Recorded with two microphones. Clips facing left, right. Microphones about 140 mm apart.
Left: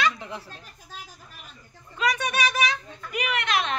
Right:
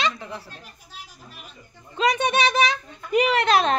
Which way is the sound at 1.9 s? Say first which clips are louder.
Right 5 dB; 25° right (ahead or behind).